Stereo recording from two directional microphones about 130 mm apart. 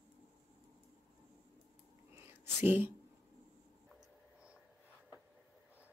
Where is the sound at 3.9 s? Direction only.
5° right (ahead or behind).